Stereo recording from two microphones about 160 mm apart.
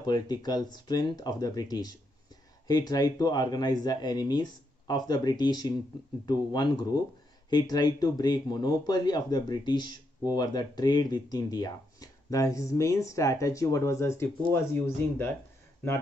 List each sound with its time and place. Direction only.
0.0 s speech: 25° left (ahead or behind)